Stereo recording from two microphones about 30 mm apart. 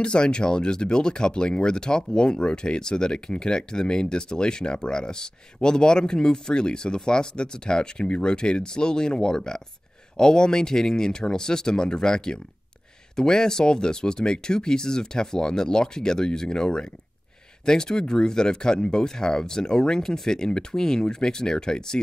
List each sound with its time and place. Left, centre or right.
0.0 s speech: left